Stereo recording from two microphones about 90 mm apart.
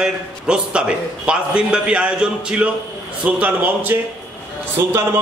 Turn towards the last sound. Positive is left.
turn(degrees=-35)  # may be behind; listen again after turning